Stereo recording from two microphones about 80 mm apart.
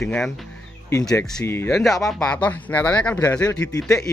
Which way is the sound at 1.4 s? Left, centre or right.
Left.